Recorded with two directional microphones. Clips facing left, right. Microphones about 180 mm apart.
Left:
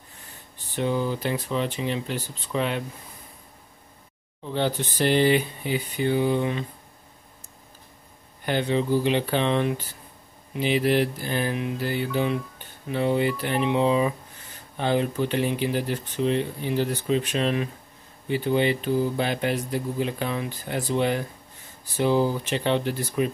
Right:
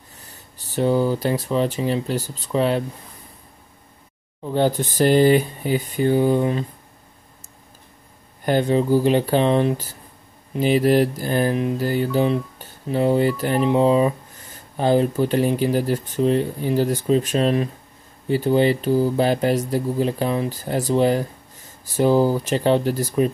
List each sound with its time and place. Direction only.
0.1 s speech: 40° right (ahead or behind)
4.4 s speech: 45° right (ahead or behind)
8.5 s music: 45° right (ahead or behind)